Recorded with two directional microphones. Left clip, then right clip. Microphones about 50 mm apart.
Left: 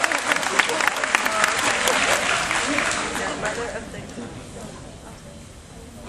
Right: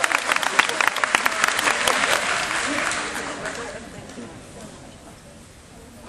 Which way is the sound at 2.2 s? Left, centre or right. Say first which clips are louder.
Left 1 dB; centre.